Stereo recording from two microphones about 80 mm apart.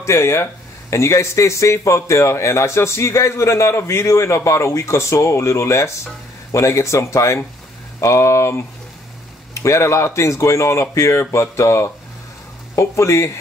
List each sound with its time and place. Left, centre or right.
0.0 s a man's voice: left